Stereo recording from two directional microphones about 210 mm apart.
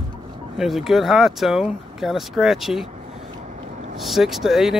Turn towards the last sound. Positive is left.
turn(degrees=0)  # may be behind; listen again after turning